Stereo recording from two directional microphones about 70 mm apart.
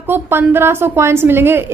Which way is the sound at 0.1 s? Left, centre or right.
Right.